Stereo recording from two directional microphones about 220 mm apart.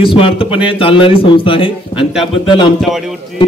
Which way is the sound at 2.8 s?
Centre (ahead or behind).